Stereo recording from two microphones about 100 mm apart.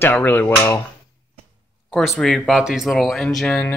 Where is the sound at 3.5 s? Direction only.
15° left (ahead or behind).